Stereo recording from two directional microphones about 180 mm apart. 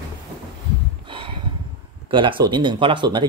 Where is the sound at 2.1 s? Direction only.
25° right (ahead or behind).